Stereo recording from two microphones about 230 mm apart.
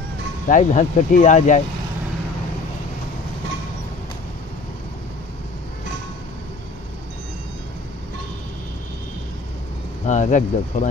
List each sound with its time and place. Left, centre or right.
0.5 s speech: left
10.0 s speech: left